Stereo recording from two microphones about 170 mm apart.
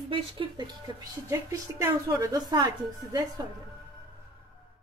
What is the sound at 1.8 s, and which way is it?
A woman's voice, 20° right (ahead or behind).